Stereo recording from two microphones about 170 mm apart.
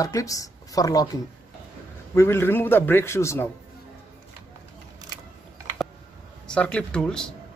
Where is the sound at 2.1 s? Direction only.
15° left (ahead or behind).